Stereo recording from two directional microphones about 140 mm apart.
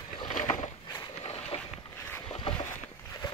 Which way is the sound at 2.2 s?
45° left (ahead or behind).